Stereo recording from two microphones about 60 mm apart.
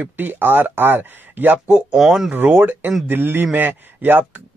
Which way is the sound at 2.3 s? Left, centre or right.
Right.